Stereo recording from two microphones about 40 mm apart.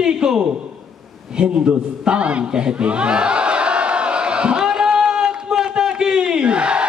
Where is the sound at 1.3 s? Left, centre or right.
Right.